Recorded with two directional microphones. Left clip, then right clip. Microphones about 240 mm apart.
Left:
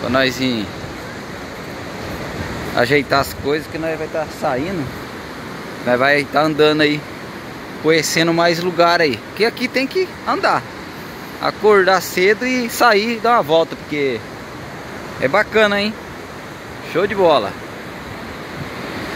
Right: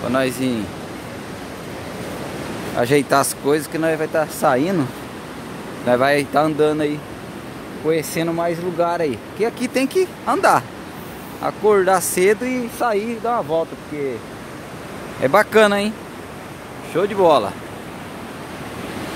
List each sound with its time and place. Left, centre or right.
0.1 s a man's voice: centre
2.8 s speech: centre
5.9 s a man's voice: centre
8.3 s a man's voice: centre
9.8 s speech: centre
11.4 s a man's voice: centre
11.9 s speech: centre
12.7 s a man's voice: centre
15.2 s speech: centre
16.9 s speech: centre